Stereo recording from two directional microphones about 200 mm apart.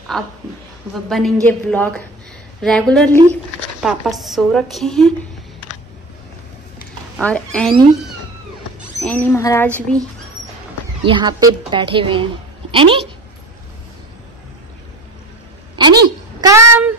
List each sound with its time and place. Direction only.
0.1 s a woman's voice: centre (ahead or behind)
7.2 s a woman's voice: 5° left (ahead or behind)
9.0 s speech: 10° left (ahead or behind)
9.7 s speech: 10° right (ahead or behind)
11.1 s a woman's voice: 20° right (ahead or behind)
15.7 s a woman's voice: 20° right (ahead or behind)